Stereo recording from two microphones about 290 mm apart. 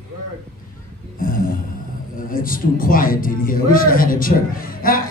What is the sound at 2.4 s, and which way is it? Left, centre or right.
Speech, left.